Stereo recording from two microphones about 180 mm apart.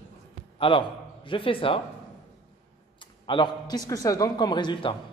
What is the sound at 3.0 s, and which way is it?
A man's voice, 25° left (ahead or behind).